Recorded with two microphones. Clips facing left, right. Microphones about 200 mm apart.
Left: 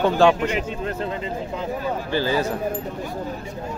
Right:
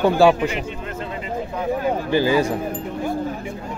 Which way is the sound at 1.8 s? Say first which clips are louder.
Right 5 dB; 15° right (ahead or behind).